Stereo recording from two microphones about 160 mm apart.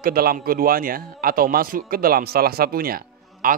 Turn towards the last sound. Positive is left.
turn(degrees=-60)  # may be behind; listen again after turning